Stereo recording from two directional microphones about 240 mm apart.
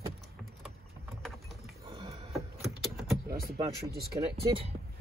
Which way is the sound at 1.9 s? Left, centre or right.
Right.